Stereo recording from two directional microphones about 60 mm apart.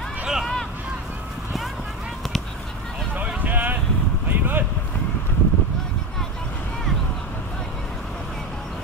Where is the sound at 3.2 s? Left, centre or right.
Right.